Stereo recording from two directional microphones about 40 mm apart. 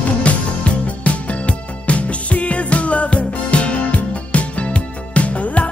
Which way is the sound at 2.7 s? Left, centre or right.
Left.